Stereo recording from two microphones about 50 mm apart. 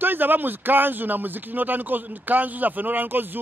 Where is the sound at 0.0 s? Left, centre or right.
Right.